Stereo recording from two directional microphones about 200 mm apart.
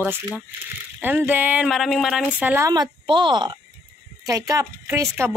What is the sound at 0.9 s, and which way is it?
Speech, 10° right (ahead or behind).